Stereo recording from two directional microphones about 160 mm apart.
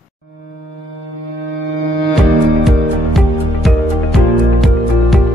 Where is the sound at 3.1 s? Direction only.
Centre (ahead or behind).